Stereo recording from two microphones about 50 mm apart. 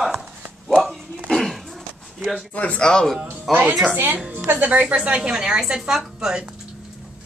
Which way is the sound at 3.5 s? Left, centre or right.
Right.